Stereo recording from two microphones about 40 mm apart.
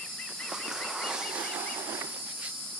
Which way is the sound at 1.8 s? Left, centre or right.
Right.